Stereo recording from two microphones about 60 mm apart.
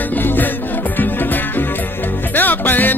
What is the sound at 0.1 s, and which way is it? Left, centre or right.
Music, left.